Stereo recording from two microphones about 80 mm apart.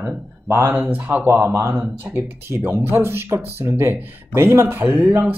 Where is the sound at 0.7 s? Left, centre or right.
Right.